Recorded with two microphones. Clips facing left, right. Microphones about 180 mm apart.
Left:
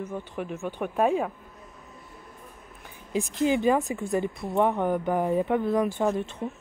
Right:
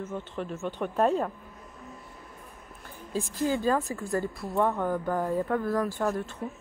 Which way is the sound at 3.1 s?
20° left (ahead or behind).